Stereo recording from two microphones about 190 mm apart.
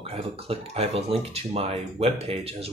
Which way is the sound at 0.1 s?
30° right (ahead or behind).